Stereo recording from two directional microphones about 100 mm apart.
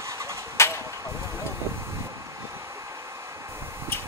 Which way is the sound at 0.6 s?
25° left (ahead or behind).